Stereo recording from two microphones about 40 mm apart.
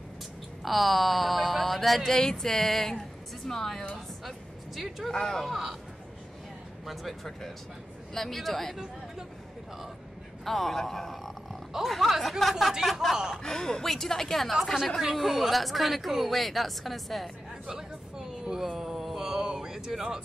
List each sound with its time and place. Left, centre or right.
0.7 s a woman's voice: centre
5.1 s a woman's voice: centre
5.4 s speech: centre
6.9 s speech: centre
10.4 s a woman's voice: centre
13.4 s a woman's voice: centre
14.5 s speech: centre
17.6 s a sound: centre
18.6 s mantra: centre
19.4 s a sound: centre